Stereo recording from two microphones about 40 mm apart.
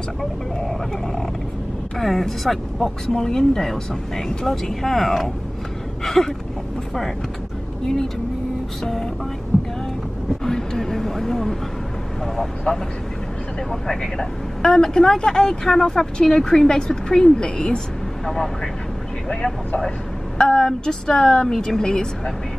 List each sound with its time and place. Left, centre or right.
0.2 s speech: centre
9.5 s heart sounds: right
10.4 s vehicle: centre
12.4 s speech: centre
20.3 s speech: centre